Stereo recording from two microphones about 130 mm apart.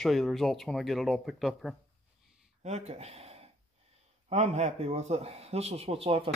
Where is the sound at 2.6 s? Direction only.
60° right (ahead or behind).